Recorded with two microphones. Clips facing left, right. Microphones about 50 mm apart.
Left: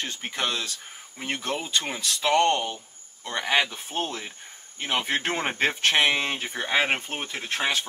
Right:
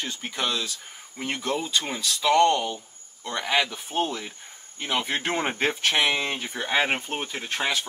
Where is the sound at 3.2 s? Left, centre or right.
Left.